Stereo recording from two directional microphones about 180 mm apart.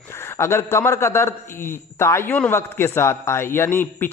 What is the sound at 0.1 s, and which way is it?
A man's voice, 15° left (ahead or behind).